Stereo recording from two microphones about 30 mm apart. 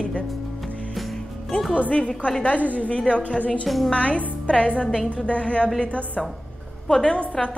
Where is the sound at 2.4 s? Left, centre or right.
Left.